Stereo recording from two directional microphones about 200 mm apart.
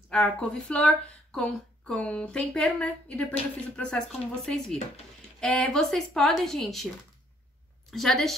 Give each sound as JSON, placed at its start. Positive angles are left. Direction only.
{"t": 0.1, "sound": "a woman's voice", "side_deg": 5}
{"t": 7.9, "sound": "a woman's voice", "side_deg": 0}